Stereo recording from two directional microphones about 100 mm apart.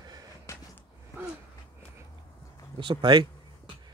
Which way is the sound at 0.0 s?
40° right (ahead or behind).